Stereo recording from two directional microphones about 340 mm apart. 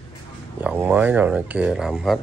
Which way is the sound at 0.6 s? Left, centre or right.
Centre.